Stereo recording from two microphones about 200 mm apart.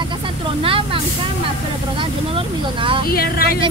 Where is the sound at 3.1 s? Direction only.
50° left (ahead or behind).